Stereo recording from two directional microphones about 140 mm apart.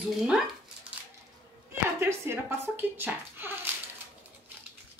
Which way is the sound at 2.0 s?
20° right (ahead or behind).